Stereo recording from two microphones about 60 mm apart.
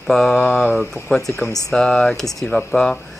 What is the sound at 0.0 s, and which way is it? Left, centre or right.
Speech, centre.